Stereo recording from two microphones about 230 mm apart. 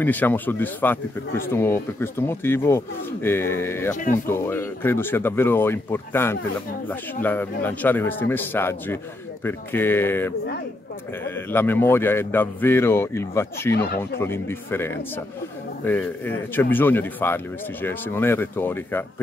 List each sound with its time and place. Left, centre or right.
0.0 s speech: centre
3.9 s speech: left
4.3 s speech: centre
13.7 s speech: left
14.2 s speech: centre